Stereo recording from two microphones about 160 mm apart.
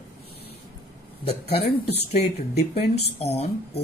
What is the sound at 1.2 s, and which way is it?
Speech, 40° left (ahead or behind).